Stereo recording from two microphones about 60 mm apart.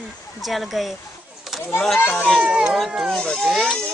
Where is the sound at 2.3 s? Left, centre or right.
Centre.